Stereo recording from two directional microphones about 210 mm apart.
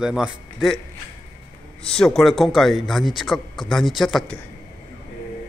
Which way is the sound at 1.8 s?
5° left (ahead or behind).